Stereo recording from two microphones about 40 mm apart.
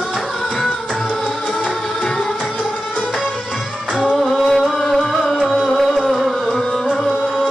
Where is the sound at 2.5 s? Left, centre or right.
Left.